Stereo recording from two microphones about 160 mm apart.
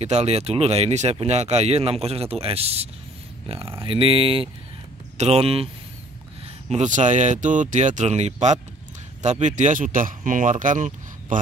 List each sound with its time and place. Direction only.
0.0 s speech: 40° right (ahead or behind)
6.7 s speech: 50° right (ahead or behind)